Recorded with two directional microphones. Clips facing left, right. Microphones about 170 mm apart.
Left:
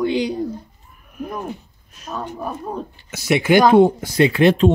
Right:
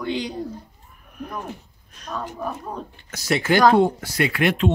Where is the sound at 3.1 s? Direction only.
15° left (ahead or behind); by 4.7 s 30° left (ahead or behind).